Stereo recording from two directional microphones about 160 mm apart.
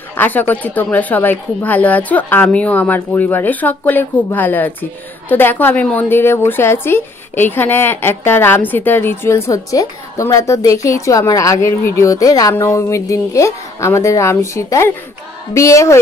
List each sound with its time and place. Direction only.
0.2 s a woman's voice: 10° left (ahead or behind)